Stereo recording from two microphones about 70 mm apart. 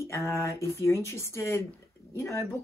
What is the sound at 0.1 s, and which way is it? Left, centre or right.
Speech, left.